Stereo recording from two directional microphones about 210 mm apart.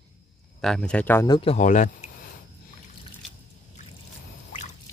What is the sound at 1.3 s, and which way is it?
Speech, 30° left (ahead or behind).